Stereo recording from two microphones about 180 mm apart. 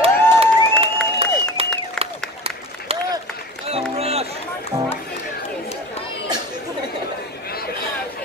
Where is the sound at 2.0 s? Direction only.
35° right (ahead or behind).